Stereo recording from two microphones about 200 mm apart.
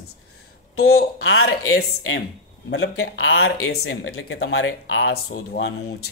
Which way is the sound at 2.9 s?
75° left (ahead or behind).